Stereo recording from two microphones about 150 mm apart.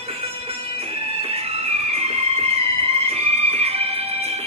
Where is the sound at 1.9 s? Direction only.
45° right (ahead or behind).